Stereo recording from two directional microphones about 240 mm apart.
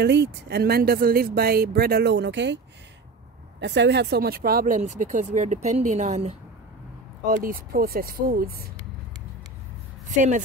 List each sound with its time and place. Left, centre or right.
0.0 s speech: right
10.0 s a woman's voice: right